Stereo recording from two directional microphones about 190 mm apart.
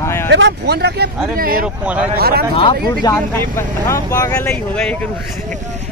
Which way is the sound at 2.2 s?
55° right (ahead or behind).